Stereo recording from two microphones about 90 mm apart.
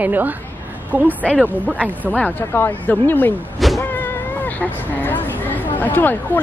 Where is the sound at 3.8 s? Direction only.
20° left (ahead or behind).